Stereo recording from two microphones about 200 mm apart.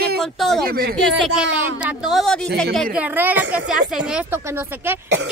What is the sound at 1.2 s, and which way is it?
Speech, 5° right (ahead or behind).